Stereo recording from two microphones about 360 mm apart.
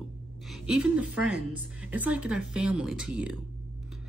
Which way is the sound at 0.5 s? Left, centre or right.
Centre.